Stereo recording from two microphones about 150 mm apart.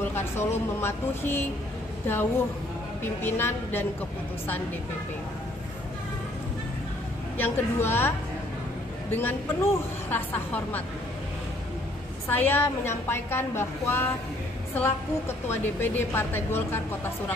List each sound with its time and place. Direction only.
0.1 s a woman's voice: 15° left (ahead or behind)
7.3 s a woman's voice: 15° left (ahead or behind)
9.1 s a woman's voice: 15° left (ahead or behind)
12.3 s a woman's voice: 15° left (ahead or behind)